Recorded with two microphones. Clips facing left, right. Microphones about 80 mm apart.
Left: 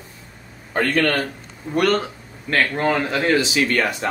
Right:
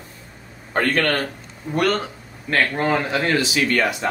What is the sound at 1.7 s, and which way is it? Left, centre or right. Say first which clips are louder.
Speech: left 2 dB; centre.